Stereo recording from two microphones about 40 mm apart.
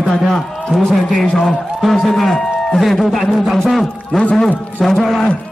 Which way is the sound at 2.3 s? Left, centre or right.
Centre.